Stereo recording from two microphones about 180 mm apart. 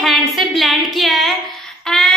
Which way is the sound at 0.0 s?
Centre (ahead or behind).